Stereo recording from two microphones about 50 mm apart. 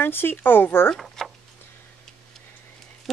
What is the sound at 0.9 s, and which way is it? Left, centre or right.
Speech, centre.